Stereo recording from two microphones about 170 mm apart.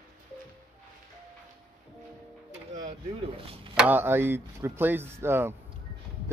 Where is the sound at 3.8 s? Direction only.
10° right (ahead or behind).